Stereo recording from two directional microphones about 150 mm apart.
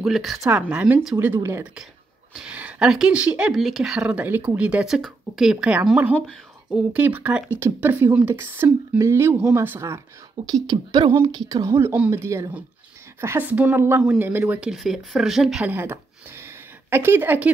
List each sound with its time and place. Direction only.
0.0 s speech: centre (ahead or behind); by 11.9 s 25° right (ahead or behind)
11.9 s speech: 15° right (ahead or behind)
15.7 s a sound: 15° right (ahead or behind)